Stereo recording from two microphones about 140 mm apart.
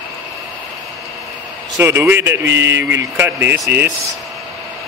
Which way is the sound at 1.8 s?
15° right (ahead or behind).